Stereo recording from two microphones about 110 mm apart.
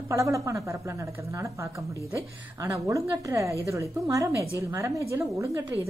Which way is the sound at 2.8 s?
30° right (ahead or behind).